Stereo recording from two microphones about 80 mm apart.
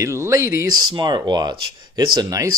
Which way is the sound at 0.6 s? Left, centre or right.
Right.